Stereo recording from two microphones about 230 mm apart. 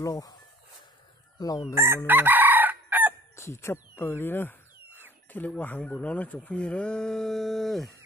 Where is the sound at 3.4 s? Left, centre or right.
Centre.